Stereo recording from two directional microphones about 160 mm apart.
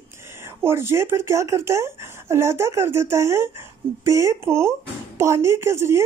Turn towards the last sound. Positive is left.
turn(degrees=-15)  # may be behind; listen again after turning